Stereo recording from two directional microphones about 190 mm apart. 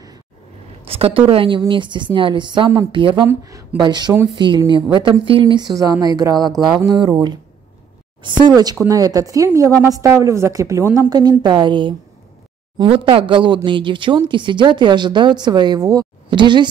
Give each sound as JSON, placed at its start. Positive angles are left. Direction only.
{"t": 0.8, "sound": "speech", "side_deg": -30}
{"t": 8.5, "sound": "a woman's voice", "side_deg": -20}